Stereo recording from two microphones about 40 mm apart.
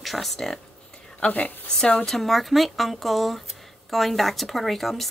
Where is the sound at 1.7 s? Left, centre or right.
Centre.